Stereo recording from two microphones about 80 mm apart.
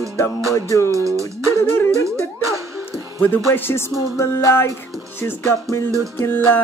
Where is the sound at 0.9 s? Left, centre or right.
Right.